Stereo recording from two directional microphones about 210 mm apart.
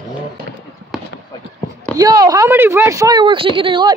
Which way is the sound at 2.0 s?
15° right (ahead or behind).